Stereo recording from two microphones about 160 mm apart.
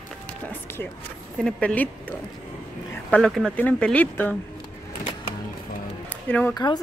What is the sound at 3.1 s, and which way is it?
Speech, 5° left (ahead or behind).